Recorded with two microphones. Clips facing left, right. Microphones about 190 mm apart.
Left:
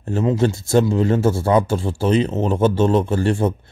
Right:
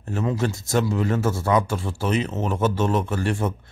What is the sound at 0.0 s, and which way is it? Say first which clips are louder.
A man's voice: left 6 dB; 30° left (ahead or behind).